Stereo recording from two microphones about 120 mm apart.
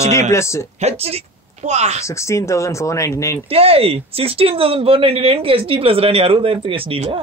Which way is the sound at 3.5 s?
55° right (ahead or behind).